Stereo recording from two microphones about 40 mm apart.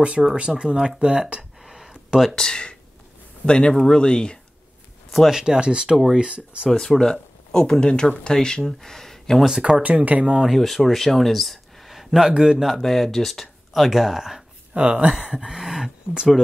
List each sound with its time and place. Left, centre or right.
0.4 s speech: right
1.6 s a sound: centre
2.3 s speech: centre
5.3 s speech: centre
6.7 s speech: centre
8.6 s speech: centre
9.6 s speech: right
9.8 s speech: right
10.2 s speech: right
10.5 s speech: centre
12.2 s speech: centre
14.7 s speech: right
15.3 s speech: centre